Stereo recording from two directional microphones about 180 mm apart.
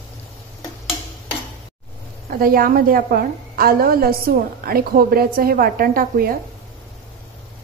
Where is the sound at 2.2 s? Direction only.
55° right (ahead or behind).